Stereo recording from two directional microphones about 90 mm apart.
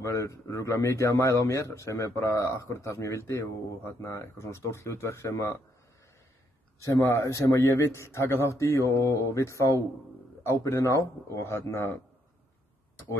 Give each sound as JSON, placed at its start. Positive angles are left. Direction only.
{"t": 0.0, "sound": "a man's voice", "side_deg": 30}
{"t": 6.8, "sound": "a man's voice", "side_deg": 35}